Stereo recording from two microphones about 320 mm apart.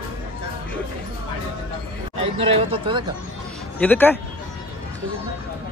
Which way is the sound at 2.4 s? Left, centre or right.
Centre.